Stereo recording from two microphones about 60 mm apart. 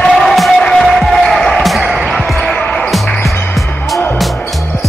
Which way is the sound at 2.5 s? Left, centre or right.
Centre.